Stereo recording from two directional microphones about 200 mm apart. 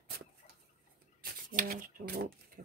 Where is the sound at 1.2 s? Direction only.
45° right (ahead or behind).